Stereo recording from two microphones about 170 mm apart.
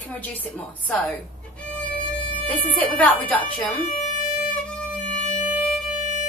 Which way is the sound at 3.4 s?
50° left (ahead or behind).